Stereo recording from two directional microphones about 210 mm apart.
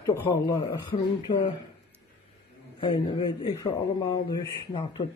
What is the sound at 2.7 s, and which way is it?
Speech, 25° left (ahead or behind).